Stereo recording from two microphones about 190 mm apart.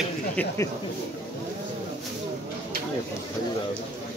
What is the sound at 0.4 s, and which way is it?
Speech, 10° left (ahead or behind).